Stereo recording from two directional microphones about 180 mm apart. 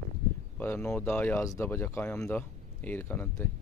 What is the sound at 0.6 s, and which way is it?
Speech, 10° left (ahead or behind).